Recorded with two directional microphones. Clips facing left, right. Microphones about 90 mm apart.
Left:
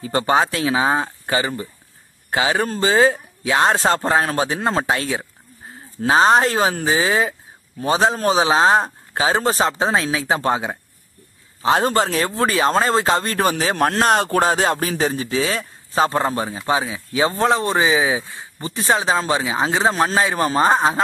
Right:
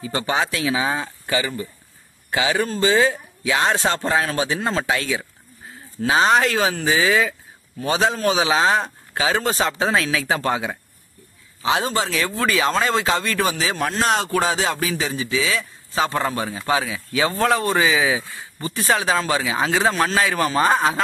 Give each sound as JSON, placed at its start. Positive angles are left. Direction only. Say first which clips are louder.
{"t": 0.0, "sound": "speech", "louder": "left 5 dB", "side_deg": 45}
{"t": 11.6, "sound": "speech", "louder": "left 4 dB", "side_deg": 45}
{"t": 16.2, "sound": "speech", "louder": "left 2 dB", "side_deg": 30}